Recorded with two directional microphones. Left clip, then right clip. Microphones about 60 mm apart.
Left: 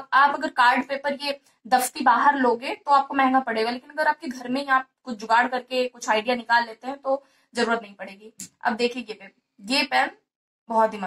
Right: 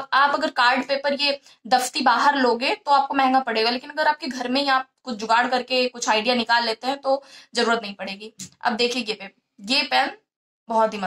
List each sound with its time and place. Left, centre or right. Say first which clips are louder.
0.0 s a woman's voice: even; centre